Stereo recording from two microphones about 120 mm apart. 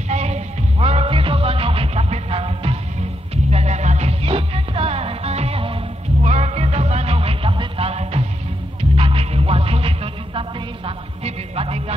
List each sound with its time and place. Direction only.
0.1 s music: 65° right (ahead or behind)
6.2 s music: 70° right (ahead or behind)
8.9 s music: 50° right (ahead or behind)